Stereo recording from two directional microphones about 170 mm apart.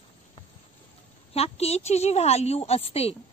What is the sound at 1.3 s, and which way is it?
A woman's voice, 35° left (ahead or behind).